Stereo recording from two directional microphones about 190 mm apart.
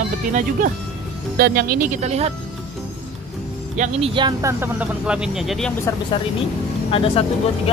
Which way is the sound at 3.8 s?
30° right (ahead or behind).